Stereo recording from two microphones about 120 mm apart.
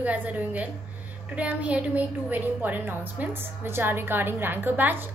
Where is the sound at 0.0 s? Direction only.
15° right (ahead or behind).